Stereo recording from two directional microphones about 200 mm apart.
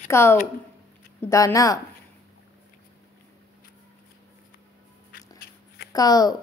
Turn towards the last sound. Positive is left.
turn(degrees=20)  # may be behind; listen again after turning